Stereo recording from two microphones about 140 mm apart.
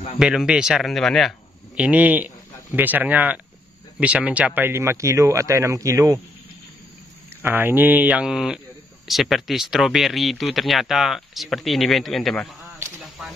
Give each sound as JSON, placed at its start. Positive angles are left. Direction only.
{"t": 0.2, "sound": "speech", "side_deg": -5}
{"t": 1.8, "sound": "a man's voice", "side_deg": -10}
{"t": 7.4, "sound": "speech", "side_deg": -15}